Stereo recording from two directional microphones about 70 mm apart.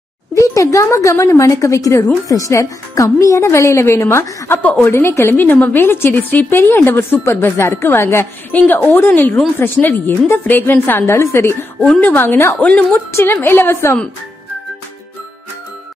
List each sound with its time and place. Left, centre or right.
0.3 s a child's voice: left
8.5 s a woman's voice: left
12.5 s a woman's voice: left
13.1 s a woman's voice: left